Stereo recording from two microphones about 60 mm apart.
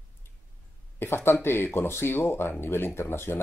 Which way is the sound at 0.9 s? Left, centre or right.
Left.